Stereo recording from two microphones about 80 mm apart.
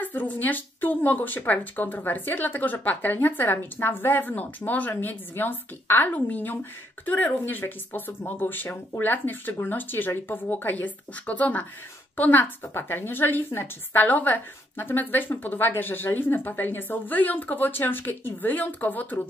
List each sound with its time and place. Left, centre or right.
0.0 s speech: left